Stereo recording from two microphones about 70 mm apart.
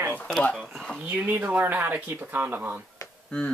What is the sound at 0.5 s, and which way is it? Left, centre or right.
Speech, centre.